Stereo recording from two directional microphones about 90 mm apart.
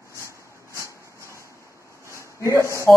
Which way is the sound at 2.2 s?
35° left (ahead or behind).